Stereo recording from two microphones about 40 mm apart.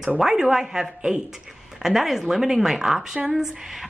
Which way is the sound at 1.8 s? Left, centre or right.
Centre.